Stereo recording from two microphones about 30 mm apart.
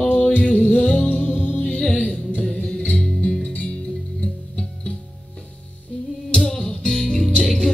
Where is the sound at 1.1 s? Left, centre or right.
Left.